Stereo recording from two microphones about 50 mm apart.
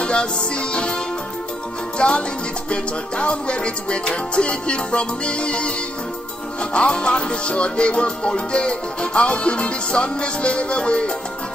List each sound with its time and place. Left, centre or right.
0.0 s music: left
2.0 s salsa music: left
2.7 s music: left